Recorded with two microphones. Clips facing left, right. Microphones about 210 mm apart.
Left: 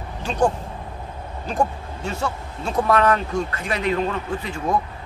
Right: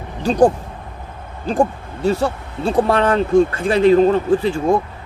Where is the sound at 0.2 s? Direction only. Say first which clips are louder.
Right 7 dB; 35° right (ahead or behind).